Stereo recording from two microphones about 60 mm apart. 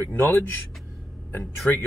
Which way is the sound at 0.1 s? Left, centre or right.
Left.